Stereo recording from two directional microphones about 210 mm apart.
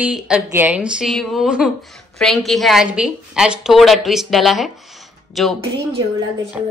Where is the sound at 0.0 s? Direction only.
5° right (ahead or behind).